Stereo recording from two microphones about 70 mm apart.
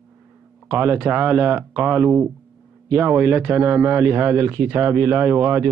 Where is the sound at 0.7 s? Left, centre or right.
Right.